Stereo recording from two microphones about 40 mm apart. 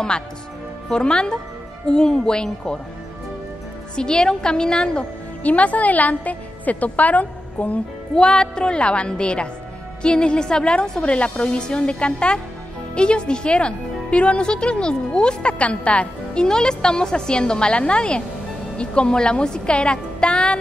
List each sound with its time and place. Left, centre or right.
0.8 s speech: left
3.9 s speech: centre
5.4 s a woman's voice: left
8.1 s speech: centre
16.4 s speech: centre